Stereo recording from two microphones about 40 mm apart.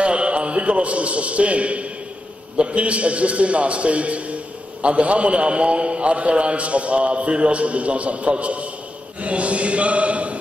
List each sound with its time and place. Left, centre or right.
0.0 s a man's voice: right